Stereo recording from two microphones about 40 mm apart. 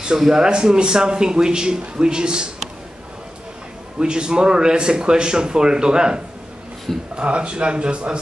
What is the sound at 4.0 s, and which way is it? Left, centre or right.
Speech, centre.